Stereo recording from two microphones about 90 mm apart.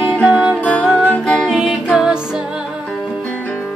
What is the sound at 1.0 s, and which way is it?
Music, 10° left (ahead or behind).